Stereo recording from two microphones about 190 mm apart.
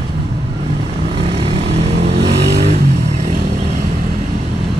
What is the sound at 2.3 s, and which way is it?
Vehicle, 65° right (ahead or behind).